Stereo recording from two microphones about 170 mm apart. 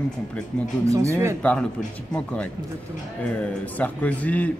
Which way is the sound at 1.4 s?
10° left (ahead or behind).